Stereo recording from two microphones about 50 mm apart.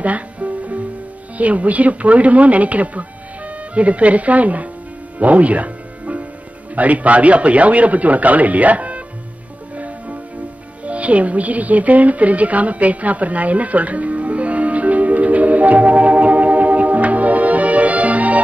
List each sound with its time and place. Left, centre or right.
0.0 s music: right
1.4 s speech: right
5.2 s music: right
6.7 s speech: right
10.8 s music: right